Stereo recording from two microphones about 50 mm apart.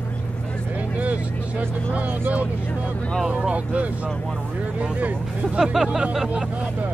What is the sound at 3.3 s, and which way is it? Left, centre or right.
Speech, right.